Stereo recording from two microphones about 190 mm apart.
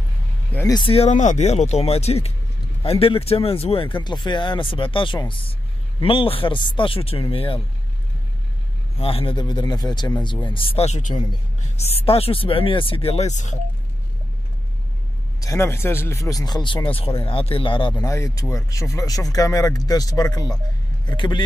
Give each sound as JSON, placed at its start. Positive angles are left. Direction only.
{"t": 0.5, "sound": "speech", "side_deg": 10}
{"t": 0.7, "sound": "speech", "side_deg": 30}
{"t": 8.9, "sound": "speech", "side_deg": 30}
{"t": 15.4, "sound": "speech", "side_deg": 15}